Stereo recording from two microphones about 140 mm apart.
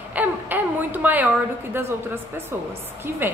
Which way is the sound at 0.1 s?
10° right (ahead or behind).